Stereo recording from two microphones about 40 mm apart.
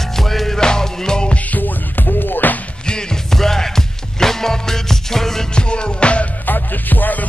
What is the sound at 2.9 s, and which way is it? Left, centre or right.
Music, centre.